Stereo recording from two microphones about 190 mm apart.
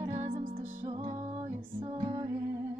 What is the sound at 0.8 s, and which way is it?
Music, 30° right (ahead or behind).